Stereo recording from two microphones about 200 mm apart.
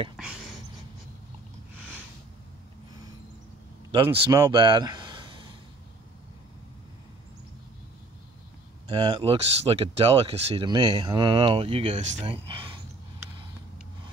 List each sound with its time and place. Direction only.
3.9 s speech: 25° right (ahead or behind)
8.8 s speech: 25° right (ahead or behind)